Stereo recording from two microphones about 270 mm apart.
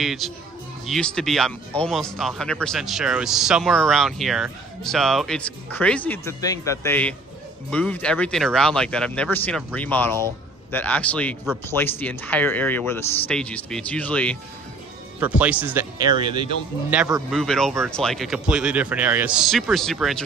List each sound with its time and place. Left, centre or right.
0.0 s speech: centre
15.1 s speech: centre
16.2 s speech: centre
16.9 s speech: centre